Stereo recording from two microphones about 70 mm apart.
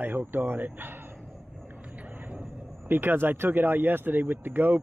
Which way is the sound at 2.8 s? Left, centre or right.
Right.